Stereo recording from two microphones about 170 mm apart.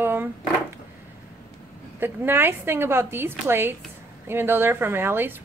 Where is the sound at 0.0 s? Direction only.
15° right (ahead or behind).